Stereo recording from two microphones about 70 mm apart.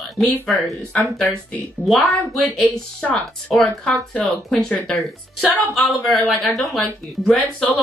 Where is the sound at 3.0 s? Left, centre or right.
Centre.